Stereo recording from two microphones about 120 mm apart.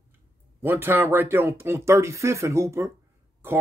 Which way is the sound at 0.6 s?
20° right (ahead or behind).